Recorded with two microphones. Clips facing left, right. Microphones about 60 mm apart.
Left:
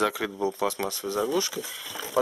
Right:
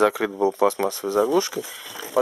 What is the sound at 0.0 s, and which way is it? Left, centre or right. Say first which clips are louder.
Speech: right 7 dB; right.